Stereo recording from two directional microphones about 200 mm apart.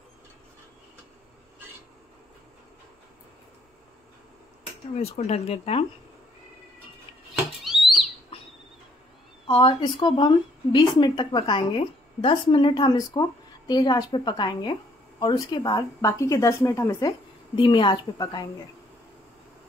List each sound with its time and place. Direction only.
4.9 s speech: 30° left (ahead or behind)
7.6 s owl: centre (ahead or behind)
9.5 s speech: 20° left (ahead or behind)